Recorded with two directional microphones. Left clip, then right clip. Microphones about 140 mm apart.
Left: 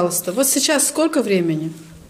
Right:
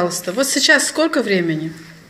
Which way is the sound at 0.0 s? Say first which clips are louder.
Even; 20° left (ahead or behind).